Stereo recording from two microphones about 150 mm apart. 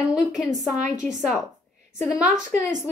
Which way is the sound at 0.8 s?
20° left (ahead or behind).